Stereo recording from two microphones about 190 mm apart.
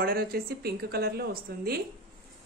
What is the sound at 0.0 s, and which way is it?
A woman's voice, 50° right (ahead or behind).